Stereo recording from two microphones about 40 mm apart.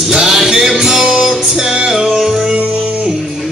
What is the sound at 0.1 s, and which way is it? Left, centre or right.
Music, centre.